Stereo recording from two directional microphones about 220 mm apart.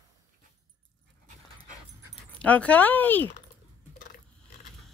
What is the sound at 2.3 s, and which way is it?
Speech, 5° left (ahead or behind).